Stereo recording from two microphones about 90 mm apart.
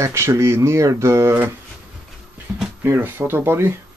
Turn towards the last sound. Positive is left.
turn(degrees=-25)  # may be behind; listen again after turning